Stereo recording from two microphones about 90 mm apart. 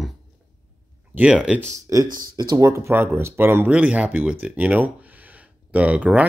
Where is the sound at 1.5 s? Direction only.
30° right (ahead or behind).